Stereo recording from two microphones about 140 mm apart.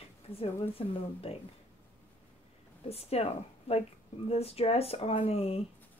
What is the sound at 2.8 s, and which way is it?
Speech, 45° left (ahead or behind).